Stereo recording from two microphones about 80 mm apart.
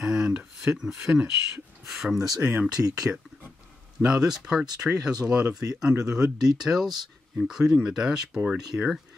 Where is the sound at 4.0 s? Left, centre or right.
Centre.